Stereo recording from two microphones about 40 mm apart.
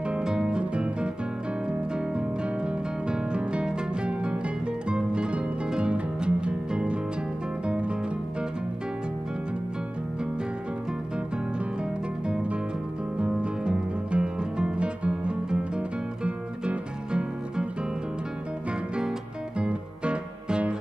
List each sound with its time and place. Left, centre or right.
0.2 s music: centre
12.3 s music: right
19.6 s music: right